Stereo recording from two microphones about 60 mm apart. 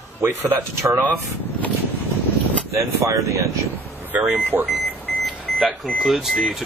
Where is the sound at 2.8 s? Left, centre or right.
Right.